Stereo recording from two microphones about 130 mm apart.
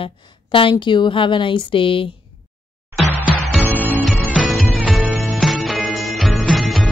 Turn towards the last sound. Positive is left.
turn(degrees=0)  # may be behind; listen again after turning